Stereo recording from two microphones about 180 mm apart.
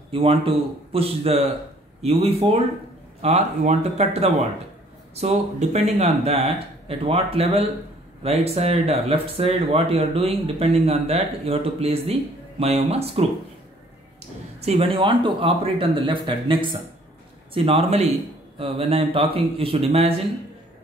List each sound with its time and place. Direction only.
0.1 s speech: 30° right (ahead or behind)
14.6 s speech: 35° right (ahead or behind)